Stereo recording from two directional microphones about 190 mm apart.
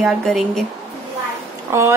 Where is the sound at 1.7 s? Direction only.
15° right (ahead or behind).